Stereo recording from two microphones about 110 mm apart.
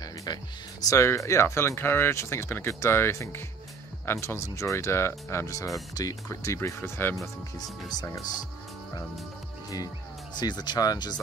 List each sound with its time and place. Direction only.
0.0 s speech: 35° left (ahead or behind)
7.9 s speech: 35° left (ahead or behind)
10.3 s speech: 40° left (ahead or behind)